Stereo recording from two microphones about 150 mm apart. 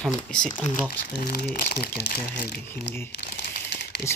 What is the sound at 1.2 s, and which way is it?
Speech, 90° left.